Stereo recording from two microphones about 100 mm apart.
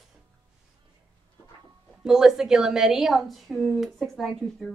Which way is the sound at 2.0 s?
5° right (ahead or behind).